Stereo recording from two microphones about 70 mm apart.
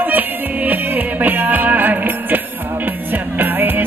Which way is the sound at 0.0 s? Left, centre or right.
Right.